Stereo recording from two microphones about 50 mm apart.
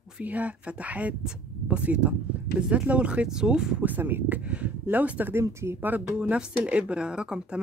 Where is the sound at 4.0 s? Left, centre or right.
Right.